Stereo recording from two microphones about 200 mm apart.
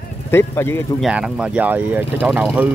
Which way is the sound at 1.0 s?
5° right (ahead or behind).